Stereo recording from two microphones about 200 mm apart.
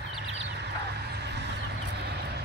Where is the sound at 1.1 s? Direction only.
55° right (ahead or behind).